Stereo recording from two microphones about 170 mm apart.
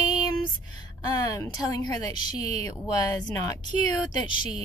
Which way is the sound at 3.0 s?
25° left (ahead or behind).